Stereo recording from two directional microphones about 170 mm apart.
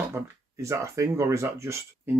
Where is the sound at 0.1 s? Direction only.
15° right (ahead or behind).